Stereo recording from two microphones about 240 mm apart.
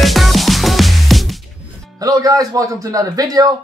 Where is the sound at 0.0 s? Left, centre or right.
Centre.